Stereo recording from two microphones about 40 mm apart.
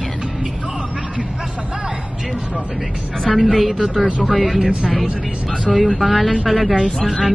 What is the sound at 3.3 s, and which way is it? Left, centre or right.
Speech, centre.